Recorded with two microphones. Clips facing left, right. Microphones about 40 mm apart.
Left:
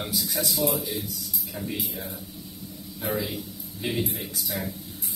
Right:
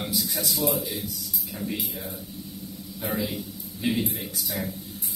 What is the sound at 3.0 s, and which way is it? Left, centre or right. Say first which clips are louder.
A man's voice: even; centre.